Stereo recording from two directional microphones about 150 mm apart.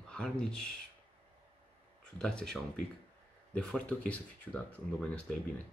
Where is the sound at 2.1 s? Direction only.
5° left (ahead or behind).